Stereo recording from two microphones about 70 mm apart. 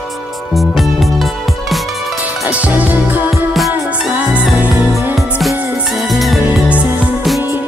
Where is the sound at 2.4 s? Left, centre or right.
Right.